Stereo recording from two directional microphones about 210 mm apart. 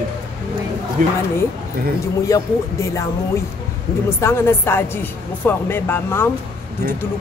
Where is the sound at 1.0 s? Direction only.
40° right (ahead or behind).